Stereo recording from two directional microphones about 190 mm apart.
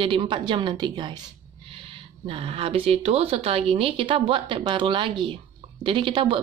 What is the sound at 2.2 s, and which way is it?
Speech, 30° right (ahead or behind).